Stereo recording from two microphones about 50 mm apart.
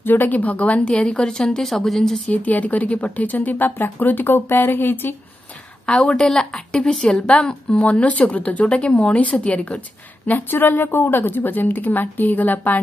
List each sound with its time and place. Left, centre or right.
0.0 s a woman's voice: left; by 2.2 s centre
2.2 s a woman's voice: left
5.9 s a woman's voice: left